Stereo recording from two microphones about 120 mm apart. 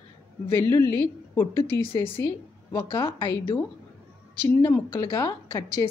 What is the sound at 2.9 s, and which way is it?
Speech, 45° left (ahead or behind).